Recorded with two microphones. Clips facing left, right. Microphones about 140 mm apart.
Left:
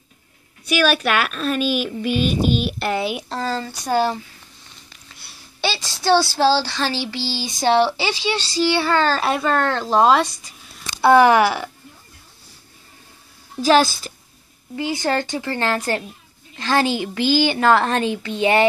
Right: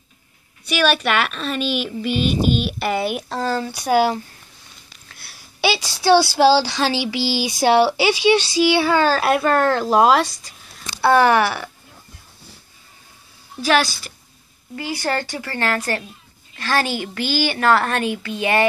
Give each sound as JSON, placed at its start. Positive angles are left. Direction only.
{"t": 0.7, "sound": "a woman's voice", "side_deg": 5}
{"t": 11.0, "sound": "speech", "side_deg": 15}
{"t": 14.8, "sound": "a woman's voice", "side_deg": 20}